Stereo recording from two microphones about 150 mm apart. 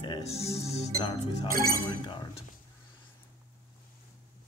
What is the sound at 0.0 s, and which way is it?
Music, 35° left (ahead or behind).